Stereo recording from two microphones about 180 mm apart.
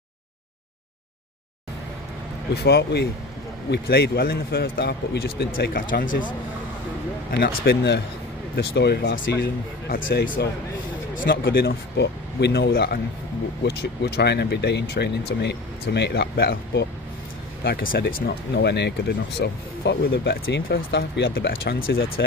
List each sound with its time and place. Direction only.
2.5 s speech: 65° left (ahead or behind); by 10.4 s 50° left (ahead or behind)
11.1 s speech: 60° left (ahead or behind)